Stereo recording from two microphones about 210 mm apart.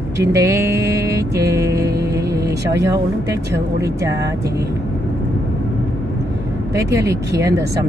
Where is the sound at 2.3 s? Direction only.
15° right (ahead or behind).